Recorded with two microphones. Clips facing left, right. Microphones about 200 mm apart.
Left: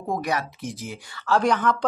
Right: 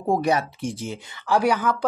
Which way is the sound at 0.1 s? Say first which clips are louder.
Right 5 dB; 30° right (ahead or behind).